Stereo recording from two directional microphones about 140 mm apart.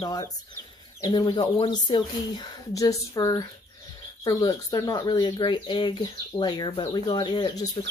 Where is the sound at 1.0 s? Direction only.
30° left (ahead or behind).